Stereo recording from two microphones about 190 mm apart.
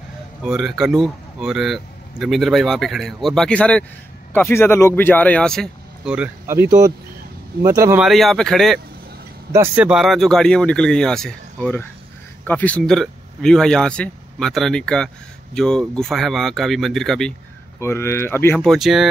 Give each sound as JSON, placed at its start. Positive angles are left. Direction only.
{"t": 0.4, "sound": "speech", "side_deg": 0}
{"t": 8.0, "sound": "speech", "side_deg": 0}
{"t": 9.5, "sound": "speech", "side_deg": -10}
{"t": 17.7, "sound": "speech", "side_deg": 15}